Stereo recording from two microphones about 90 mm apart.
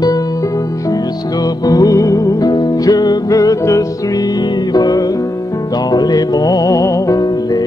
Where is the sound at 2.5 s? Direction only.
50° left (ahead or behind).